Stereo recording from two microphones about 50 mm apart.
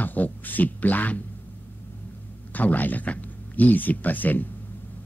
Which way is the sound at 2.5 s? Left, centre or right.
Left.